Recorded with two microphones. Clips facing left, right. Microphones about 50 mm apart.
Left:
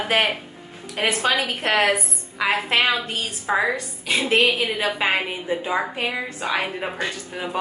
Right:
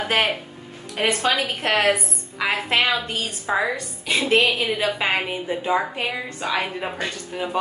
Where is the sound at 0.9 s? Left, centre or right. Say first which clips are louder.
Even; centre.